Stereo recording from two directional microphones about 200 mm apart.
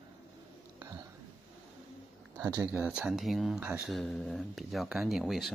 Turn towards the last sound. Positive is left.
turn(degrees=0)  # may be behind; listen again after turning